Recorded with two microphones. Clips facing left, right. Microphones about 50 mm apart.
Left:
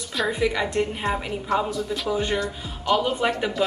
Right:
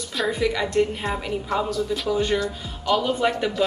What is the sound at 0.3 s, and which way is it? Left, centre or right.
Speech, centre.